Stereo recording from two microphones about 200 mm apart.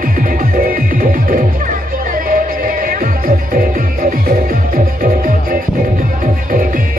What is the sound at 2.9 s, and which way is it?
Music, 45° right (ahead or behind).